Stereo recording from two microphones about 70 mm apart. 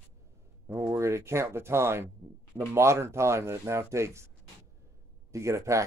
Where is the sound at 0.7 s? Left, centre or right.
Right.